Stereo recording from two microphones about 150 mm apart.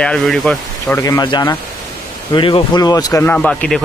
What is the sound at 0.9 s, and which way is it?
Speech, 25° left (ahead or behind).